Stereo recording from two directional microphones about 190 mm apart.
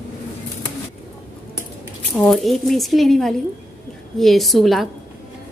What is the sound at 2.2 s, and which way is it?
A woman's voice, centre (ahead or behind).